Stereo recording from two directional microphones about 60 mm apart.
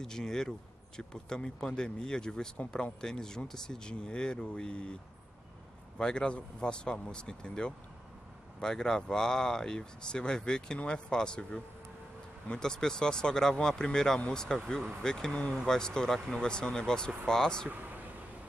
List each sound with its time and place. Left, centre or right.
0.0 s speech: centre
5.9 s speech: centre
17.6 s a sound: right